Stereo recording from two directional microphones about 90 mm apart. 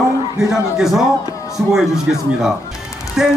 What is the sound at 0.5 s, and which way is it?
Speech, 5° right (ahead or behind).